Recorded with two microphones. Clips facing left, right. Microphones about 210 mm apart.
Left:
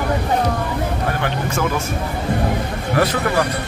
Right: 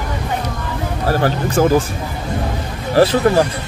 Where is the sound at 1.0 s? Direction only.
35° right (ahead or behind).